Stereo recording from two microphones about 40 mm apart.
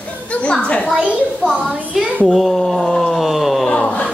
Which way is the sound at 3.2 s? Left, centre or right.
Centre.